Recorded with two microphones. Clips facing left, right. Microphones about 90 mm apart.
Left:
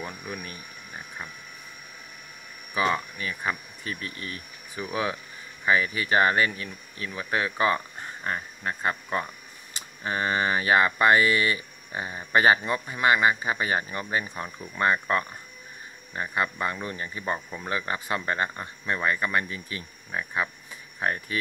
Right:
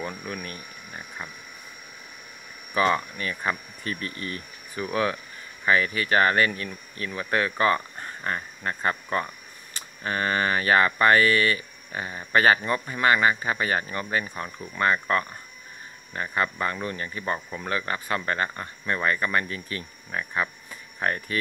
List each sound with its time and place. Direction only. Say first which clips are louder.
0.0 s speech: right 3 dB; 5° left (ahead or behind)
2.7 s speech: right 3 dB; 5° left (ahead or behind)